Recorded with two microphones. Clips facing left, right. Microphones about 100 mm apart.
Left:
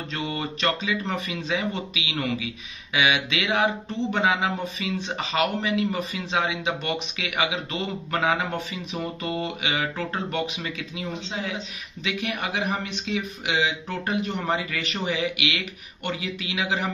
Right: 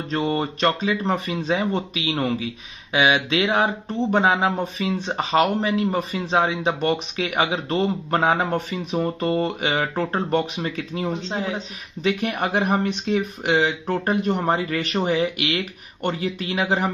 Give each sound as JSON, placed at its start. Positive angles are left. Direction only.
{"t": 0.1, "sound": "speech", "side_deg": -40}